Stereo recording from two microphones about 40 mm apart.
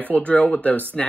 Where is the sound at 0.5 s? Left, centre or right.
Left.